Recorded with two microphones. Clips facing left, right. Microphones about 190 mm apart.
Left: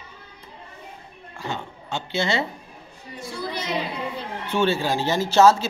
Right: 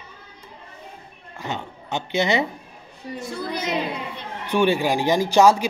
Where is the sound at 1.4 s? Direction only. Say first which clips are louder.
Right 1 dB; 20° right (ahead or behind).